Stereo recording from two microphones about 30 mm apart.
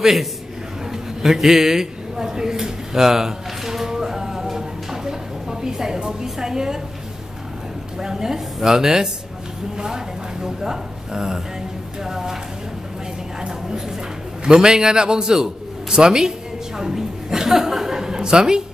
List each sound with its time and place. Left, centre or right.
0.0 s a man's voice: centre
2.2 s a sound: centre
6.2 s a woman's voice: centre
8.0 s a woman's voice: centre
13.5 s a woman's voice: centre
15.3 s a sound: centre
16.0 s chuckle: right